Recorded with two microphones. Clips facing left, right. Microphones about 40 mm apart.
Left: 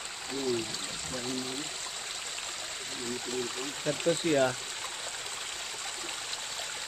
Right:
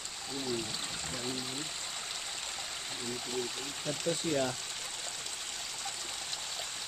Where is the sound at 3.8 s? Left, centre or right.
Left.